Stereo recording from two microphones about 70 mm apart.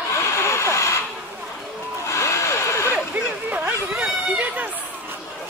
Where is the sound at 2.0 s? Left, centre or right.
Left.